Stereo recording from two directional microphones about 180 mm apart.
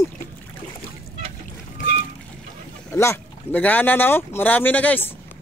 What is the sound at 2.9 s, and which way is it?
Speech, 15° left (ahead or behind).